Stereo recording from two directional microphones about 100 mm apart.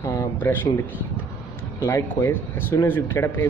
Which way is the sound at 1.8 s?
20° left (ahead or behind).